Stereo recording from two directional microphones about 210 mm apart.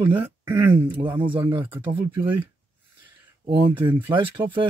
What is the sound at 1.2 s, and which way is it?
Speech, 25° right (ahead or behind).